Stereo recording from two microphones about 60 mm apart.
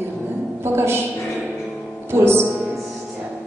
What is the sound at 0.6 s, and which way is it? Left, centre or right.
Speech, right.